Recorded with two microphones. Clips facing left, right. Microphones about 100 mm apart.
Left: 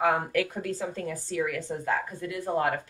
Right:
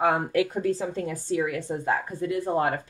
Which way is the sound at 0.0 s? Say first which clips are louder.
Right 2 dB; 25° right (ahead or behind).